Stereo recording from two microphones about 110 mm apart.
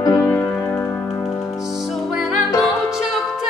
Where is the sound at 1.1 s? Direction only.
30° left (ahead or behind).